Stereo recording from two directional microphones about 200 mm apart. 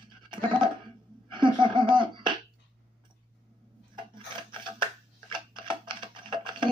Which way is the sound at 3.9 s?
25° right (ahead or behind).